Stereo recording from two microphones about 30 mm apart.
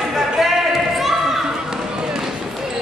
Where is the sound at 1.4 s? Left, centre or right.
Centre.